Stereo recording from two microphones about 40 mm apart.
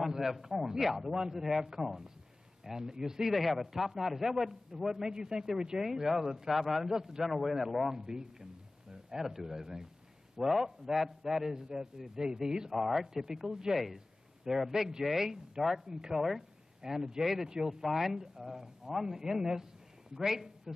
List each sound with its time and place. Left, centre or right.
0.0 s a man's voice: centre
7.2 s a man's voice: centre
7.9 s a man's voice: centre
13.9 s a sound: centre
14.7 s a man's voice: centre
16.2 s a man's voice: centre
20.7 s a sound: centre